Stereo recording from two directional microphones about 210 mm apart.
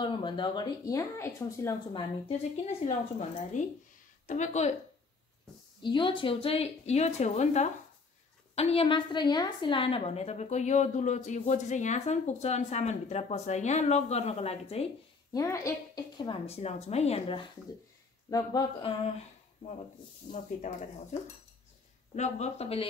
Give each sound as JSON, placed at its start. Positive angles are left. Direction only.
{"t": 0.0, "sound": "speech", "side_deg": 20}
{"t": 2.2, "sound": "a woman's voice", "side_deg": 30}
{"t": 5.8, "sound": "a woman's voice", "side_deg": 25}
{"t": 15.3, "sound": "a woman's voice", "side_deg": 15}
{"t": 20.7, "sound": "a woman's voice", "side_deg": 35}
{"t": 22.1, "sound": "a woman's voice", "side_deg": 35}